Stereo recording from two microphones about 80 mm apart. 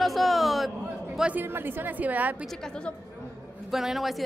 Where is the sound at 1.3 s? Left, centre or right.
Right.